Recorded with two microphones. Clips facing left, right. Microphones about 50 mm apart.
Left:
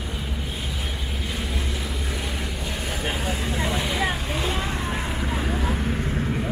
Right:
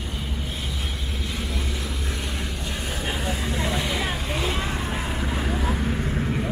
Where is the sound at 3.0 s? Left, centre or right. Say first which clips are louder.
Even; centre.